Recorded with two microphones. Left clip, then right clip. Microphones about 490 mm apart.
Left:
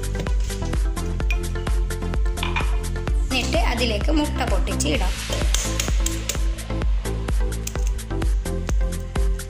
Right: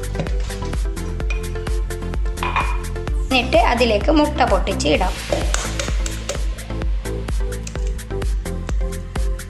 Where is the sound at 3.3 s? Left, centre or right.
Right.